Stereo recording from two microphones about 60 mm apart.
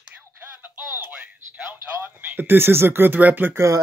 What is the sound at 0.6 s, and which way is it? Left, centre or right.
Music, right.